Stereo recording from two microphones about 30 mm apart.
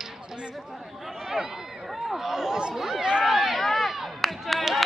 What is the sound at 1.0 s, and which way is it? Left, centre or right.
Speech, centre.